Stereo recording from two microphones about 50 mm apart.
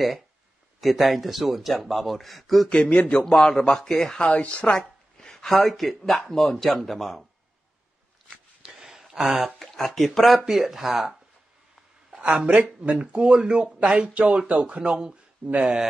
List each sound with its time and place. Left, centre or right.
0.7 s speech: centre
2.7 s speech: left
3.3 s a man's voice: centre
8.6 s a sound: centre
9.6 s speech: centre
10.4 s speech: centre
12.1 s speech: centre
14.8 s speech: centre